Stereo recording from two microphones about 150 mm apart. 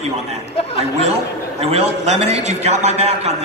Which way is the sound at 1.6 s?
45° right (ahead or behind).